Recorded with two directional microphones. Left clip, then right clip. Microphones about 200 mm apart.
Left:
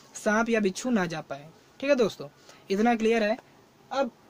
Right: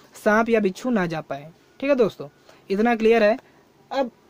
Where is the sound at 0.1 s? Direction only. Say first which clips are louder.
Right 6 dB; 35° right (ahead or behind).